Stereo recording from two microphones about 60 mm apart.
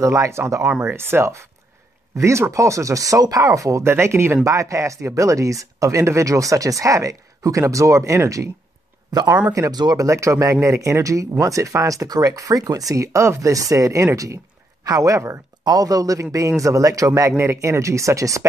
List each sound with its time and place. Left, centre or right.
0.0 s speech: right
0.8 s speech: right
3.8 s speech: right
4.5 s speech: right
9.5 s a man's voice: right
15.6 s a man's voice: right
17.4 s speech: right